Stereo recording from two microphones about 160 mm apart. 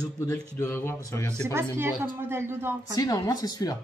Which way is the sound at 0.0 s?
20° left (ahead or behind).